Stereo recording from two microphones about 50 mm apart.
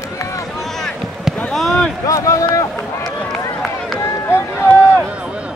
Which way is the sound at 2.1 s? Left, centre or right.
Left.